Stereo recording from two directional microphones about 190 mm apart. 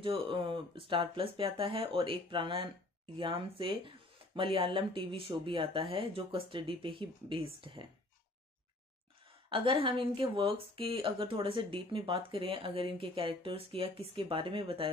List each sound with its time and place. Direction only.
0.0 s speech: 25° right (ahead or behind)
9.5 s speech: 25° right (ahead or behind)